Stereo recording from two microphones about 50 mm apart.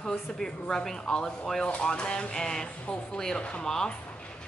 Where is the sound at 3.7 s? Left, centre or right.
Centre.